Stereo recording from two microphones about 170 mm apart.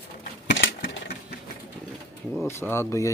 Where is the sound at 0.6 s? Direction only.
90° left.